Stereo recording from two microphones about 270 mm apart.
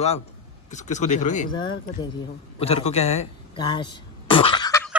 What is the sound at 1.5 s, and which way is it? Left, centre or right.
A man's voice, centre.